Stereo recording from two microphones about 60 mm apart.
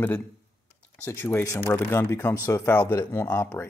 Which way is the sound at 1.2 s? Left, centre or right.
Left.